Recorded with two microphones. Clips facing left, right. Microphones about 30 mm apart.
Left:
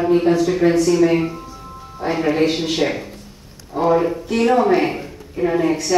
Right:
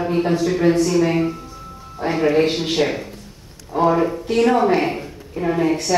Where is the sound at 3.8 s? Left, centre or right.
Centre.